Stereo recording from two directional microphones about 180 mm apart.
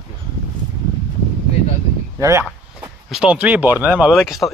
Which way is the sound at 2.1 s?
15° right (ahead or behind).